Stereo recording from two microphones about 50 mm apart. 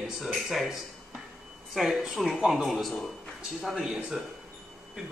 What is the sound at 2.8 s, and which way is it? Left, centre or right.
Speech, centre.